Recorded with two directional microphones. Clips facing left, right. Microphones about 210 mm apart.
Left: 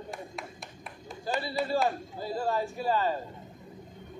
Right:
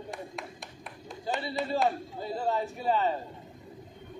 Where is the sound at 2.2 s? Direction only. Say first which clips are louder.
Even; 20° right (ahead or behind).